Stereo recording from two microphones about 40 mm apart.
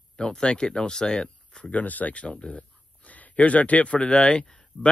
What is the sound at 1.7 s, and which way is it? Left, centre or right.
Speech, left.